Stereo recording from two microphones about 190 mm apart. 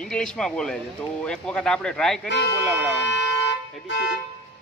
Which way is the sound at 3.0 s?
65° left (ahead or behind).